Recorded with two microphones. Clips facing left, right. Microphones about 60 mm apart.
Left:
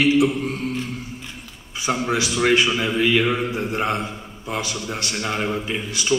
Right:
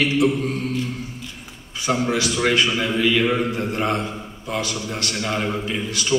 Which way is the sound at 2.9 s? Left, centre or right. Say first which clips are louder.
Even; centre.